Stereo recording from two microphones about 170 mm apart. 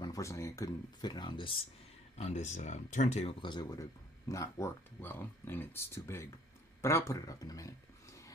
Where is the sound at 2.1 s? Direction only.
40° left (ahead or behind); by 7.7 s 20° left (ahead or behind).